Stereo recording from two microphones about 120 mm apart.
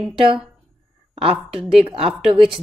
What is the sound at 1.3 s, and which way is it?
Speech, 5° right (ahead or behind).